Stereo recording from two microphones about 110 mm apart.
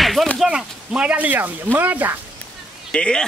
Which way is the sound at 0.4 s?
5° right (ahead or behind).